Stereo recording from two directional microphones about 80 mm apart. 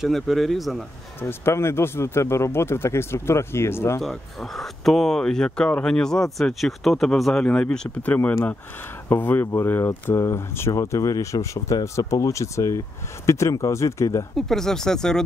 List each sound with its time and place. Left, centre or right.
0.0 s speech: centre
1.2 s speech: left
4.0 s speech: centre; by 14.2 s left
14.3 s speech: centre